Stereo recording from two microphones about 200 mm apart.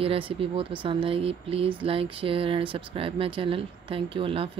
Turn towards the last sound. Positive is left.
turn(degrees=-25)  # may be behind; listen again after turning